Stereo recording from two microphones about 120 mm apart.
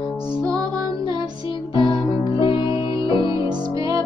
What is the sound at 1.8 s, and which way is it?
Music, 50° left (ahead or behind).